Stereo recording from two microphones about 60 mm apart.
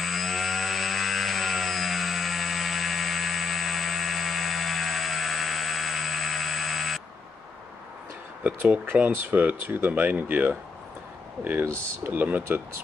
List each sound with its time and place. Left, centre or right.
0.0 s chainsaw: centre
8.5 s speech: right
12.0 s speech: right